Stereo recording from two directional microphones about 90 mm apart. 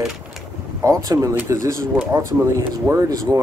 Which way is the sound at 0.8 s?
40° right (ahead or behind).